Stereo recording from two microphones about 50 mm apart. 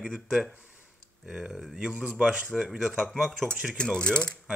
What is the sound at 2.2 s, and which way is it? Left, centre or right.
Speech, centre.